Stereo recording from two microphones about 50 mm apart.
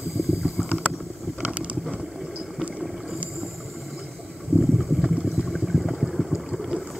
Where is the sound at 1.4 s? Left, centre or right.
Right.